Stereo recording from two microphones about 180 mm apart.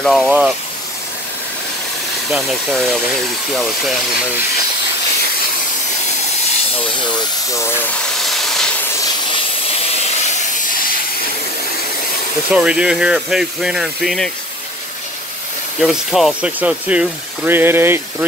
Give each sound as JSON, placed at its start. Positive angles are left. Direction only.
{"t": 0.0, "sound": "speech", "side_deg": 5}
{"t": 2.3, "sound": "speech", "side_deg": 5}
{"t": 7.0, "sound": "speech", "side_deg": 25}
{"t": 8.2, "sound": "hiss", "side_deg": 0}
{"t": 12.4, "sound": "speech", "side_deg": -5}
{"t": 15.8, "sound": "speech", "side_deg": 0}